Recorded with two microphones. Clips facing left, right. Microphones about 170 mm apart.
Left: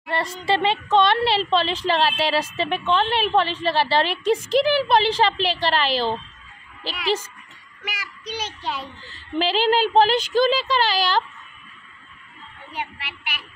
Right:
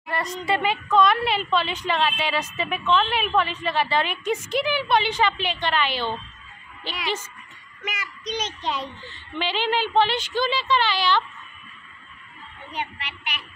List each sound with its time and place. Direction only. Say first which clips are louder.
0.1 s speech: left 2 dB; 30° left (ahead or behind)
7.8 s a child's voice: right 2 dB; 10° left (ahead or behind)
9.1 s speech: left 6 dB; 40° left (ahead or behind)
12.7 s a child's voice: even; 10° left (ahead or behind)